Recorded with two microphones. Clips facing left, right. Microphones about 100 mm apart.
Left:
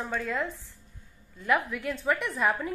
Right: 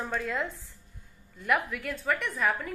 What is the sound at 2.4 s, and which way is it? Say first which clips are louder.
Speech: left 2 dB; 15° left (ahead or behind).